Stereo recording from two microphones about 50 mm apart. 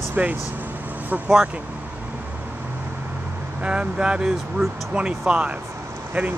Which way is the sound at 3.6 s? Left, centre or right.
Right.